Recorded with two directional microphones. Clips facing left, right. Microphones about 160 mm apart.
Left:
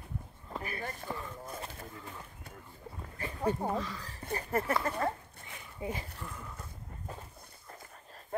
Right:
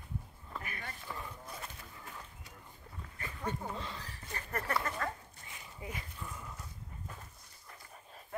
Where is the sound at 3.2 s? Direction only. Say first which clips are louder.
Left 7 dB; 35° left (ahead or behind).